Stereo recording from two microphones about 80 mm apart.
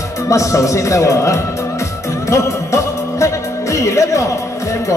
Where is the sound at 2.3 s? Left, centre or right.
Left.